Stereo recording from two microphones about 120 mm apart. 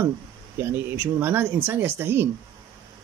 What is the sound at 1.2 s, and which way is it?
Speech, 20° right (ahead or behind).